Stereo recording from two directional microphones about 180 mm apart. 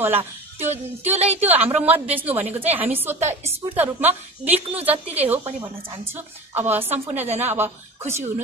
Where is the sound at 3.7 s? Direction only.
10° right (ahead or behind).